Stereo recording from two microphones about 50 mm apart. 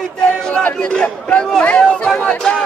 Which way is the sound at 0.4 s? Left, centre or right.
Centre.